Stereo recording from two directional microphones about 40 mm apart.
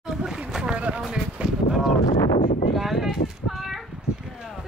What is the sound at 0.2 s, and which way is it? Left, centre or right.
Boat, centre.